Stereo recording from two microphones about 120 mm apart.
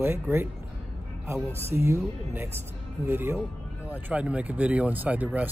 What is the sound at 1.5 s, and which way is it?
Speech, 20° right (ahead or behind).